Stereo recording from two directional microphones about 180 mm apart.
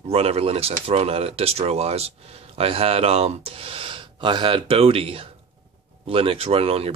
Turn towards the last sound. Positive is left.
turn(degrees=-35)  # may be behind; listen again after turning